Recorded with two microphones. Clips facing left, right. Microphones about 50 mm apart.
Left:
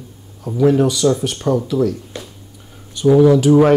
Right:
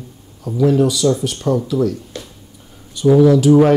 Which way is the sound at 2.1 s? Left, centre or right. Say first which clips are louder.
Even; centre.